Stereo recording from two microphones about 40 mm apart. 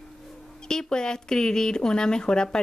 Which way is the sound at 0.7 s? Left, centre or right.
Centre.